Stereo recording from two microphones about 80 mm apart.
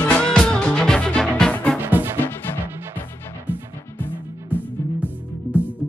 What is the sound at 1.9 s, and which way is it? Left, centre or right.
Music, right.